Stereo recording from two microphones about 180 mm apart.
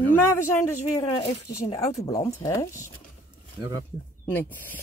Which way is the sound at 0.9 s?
30° left (ahead or behind).